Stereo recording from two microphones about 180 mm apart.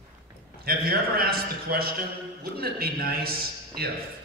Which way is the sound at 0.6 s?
60° right (ahead or behind).